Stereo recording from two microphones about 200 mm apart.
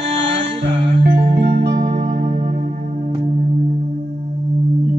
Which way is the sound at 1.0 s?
60° right (ahead or behind).